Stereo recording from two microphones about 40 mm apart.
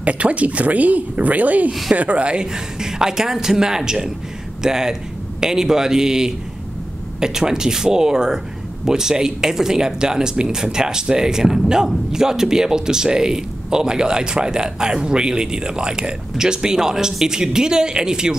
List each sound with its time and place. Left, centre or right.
0.0 s a woman's voice: right
1.7 s speech: centre
2.0 s speech: right; by 18.3 s centre